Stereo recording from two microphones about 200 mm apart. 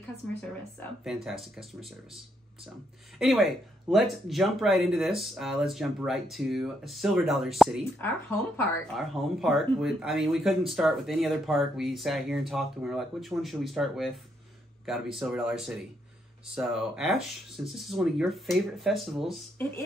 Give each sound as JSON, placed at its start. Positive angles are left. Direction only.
{"t": 0.4, "sound": "speech", "side_deg": 0}
{"t": 3.2, "sound": "speech", "side_deg": 0}
{"t": 8.0, "sound": "speech", "side_deg": 10}
{"t": 8.9, "sound": "speech", "side_deg": 0}